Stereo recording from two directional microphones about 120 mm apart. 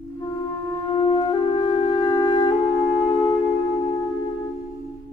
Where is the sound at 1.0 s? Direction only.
35° left (ahead or behind).